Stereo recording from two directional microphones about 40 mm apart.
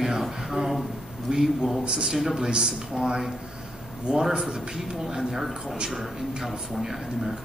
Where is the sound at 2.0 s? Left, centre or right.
Centre.